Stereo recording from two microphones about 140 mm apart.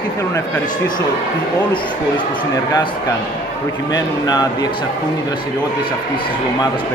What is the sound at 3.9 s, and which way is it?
Speech, 30° left (ahead or behind).